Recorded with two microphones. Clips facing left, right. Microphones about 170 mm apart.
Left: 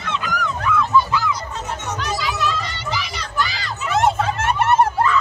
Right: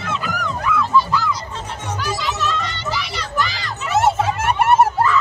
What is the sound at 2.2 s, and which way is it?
Children playing, centre (ahead or behind).